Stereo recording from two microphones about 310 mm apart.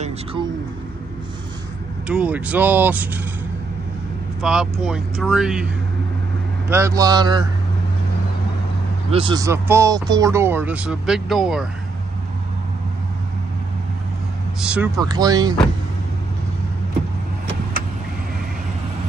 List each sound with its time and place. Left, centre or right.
0.0 s speech: centre
2.0 s speech: centre
4.4 s speech: centre
6.7 s speech: centre
9.1 s speech: centre
14.6 s speech: centre